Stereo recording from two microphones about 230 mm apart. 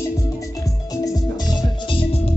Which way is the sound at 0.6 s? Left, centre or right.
Centre.